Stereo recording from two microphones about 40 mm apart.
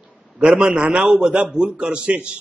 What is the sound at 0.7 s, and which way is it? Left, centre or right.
Speech, right.